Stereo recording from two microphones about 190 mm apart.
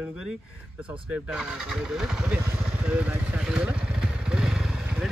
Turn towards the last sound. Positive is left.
turn(degrees=-5)  # may be behind; listen again after turning